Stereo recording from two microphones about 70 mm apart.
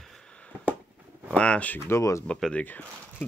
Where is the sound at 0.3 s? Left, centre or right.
Centre.